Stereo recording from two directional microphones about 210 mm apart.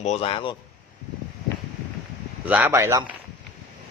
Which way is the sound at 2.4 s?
10° right (ahead or behind).